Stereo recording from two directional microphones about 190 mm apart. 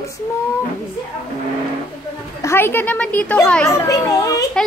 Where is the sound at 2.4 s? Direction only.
10° left (ahead or behind).